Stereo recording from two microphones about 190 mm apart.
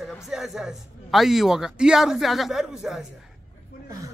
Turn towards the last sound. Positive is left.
turn(degrees=0)  # may be behind; listen again after turning